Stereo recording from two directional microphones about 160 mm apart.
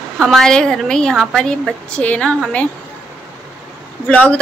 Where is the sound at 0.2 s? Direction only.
5° left (ahead or behind).